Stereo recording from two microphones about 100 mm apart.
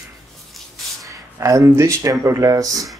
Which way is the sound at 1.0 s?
35° right (ahead or behind).